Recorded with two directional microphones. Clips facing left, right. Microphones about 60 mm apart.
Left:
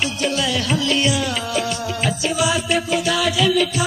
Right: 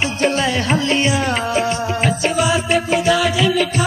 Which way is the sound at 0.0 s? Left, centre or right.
Right.